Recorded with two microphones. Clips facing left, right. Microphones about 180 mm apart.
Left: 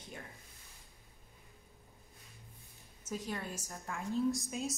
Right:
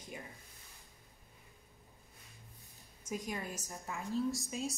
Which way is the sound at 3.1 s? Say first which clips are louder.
Even; 10° right (ahead or behind).